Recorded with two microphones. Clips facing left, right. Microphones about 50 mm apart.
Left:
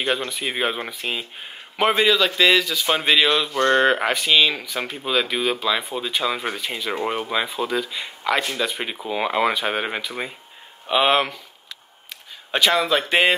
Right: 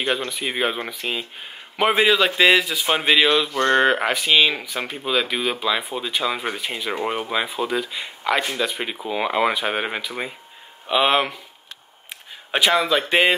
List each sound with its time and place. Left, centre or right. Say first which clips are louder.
0.0 s speech: even; centre
2.0 s a man's voice: right 2 dB; right; by 11.3 s centre
12.4 s a sound: even; centre
12.7 s speech: right 1 dB; centre